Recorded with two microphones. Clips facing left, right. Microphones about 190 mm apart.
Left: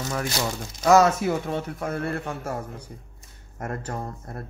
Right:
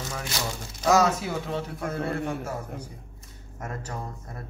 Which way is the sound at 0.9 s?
55° left (ahead or behind).